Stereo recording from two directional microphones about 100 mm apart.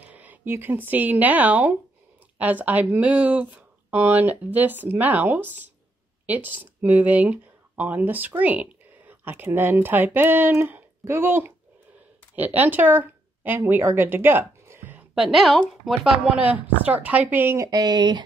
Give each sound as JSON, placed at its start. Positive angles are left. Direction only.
{"t": 0.0, "sound": "speech", "side_deg": -15}
{"t": 15.1, "sound": "a woman's voice", "side_deg": -5}
{"t": 17.6, "sound": "speech", "side_deg": -40}